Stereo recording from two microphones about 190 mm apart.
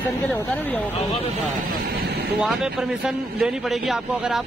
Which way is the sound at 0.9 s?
30° left (ahead or behind).